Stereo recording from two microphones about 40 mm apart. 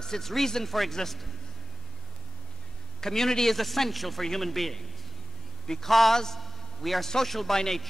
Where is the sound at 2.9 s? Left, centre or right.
Centre.